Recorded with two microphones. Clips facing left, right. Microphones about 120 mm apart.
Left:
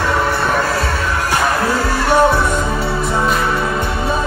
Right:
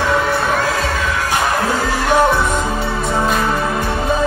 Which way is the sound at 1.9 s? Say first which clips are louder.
Left 1 dB; 40° left (ahead or behind).